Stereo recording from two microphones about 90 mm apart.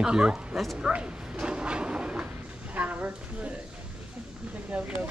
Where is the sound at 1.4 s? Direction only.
10° right (ahead or behind).